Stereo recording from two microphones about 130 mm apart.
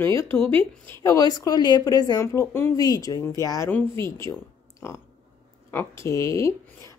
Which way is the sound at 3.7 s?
10° left (ahead or behind).